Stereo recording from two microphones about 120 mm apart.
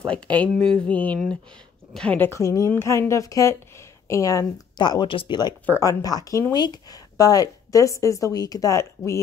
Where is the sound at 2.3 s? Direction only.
25° left (ahead or behind).